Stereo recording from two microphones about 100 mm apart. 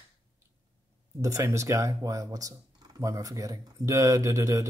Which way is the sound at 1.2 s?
30° right (ahead or behind).